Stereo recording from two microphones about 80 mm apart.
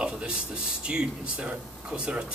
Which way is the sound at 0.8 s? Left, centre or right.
Centre.